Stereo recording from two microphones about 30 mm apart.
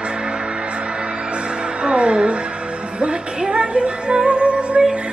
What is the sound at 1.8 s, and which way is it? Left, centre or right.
Music, right.